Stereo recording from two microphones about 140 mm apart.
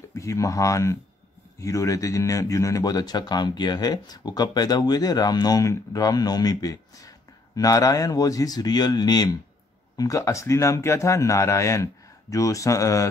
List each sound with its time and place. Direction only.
0.1 s speech: 20° left (ahead or behind)